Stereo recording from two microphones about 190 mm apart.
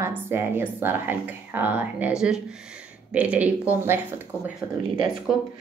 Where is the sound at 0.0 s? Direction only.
10° right (ahead or behind).